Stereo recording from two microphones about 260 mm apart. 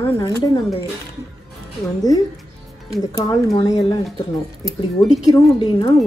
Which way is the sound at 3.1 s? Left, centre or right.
Centre.